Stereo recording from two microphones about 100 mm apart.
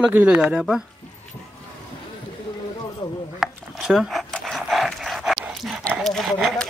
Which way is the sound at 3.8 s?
5° right (ahead or behind).